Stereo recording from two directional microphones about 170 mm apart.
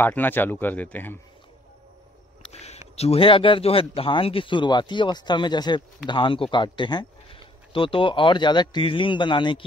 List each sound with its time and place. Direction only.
0.0 s speech: 10° left (ahead or behind)
2.4 s a sound: 40° left (ahead or behind)
3.0 s speech: 35° left (ahead or behind)